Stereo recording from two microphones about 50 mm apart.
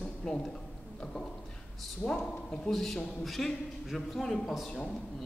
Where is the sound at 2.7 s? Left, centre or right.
Centre.